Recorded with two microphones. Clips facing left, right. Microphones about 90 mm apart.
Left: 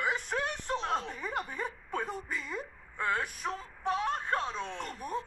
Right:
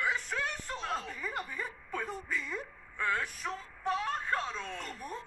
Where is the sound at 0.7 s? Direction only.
20° left (ahead or behind).